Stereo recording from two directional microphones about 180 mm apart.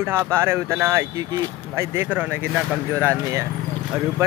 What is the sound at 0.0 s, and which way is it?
Speech, 15° right (ahead or behind).